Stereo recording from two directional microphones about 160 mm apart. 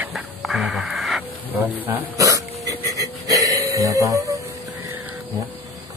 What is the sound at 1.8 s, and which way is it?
Hiccup, 10° right (ahead or behind).